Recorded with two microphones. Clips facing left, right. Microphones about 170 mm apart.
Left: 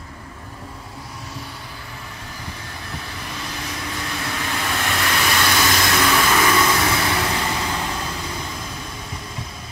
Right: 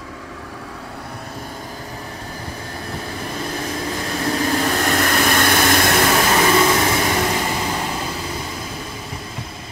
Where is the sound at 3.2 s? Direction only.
50° right (ahead or behind).